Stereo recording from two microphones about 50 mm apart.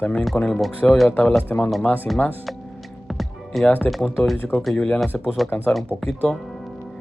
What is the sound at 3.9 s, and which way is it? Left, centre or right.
Speech, centre.